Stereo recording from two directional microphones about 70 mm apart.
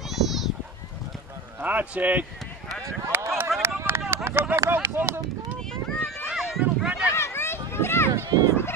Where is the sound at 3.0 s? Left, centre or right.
Right.